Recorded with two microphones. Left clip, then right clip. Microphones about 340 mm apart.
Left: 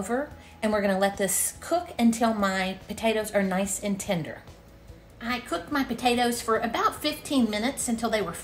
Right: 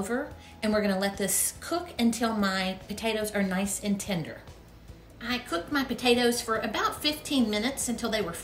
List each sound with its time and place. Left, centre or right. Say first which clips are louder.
0.0 s a woman's voice: left 2 dB; centre
5.2 s a woman's voice: left 1 dB; centre